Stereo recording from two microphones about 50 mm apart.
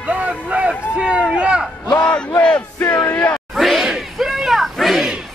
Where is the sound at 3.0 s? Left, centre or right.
Left.